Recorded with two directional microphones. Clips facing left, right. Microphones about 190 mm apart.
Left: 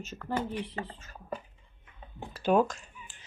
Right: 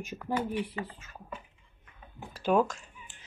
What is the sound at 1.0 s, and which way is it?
Speech, 40° left (ahead or behind).